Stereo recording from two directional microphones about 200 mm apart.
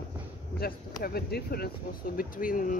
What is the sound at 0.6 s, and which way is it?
Speech, 50° left (ahead or behind).